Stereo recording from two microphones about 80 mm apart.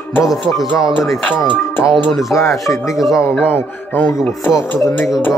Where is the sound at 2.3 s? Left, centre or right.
Left.